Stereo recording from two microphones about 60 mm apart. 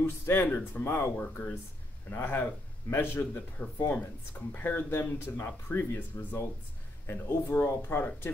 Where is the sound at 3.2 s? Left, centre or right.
Left.